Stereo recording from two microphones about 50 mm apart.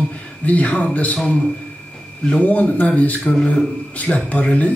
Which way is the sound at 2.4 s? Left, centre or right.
Left.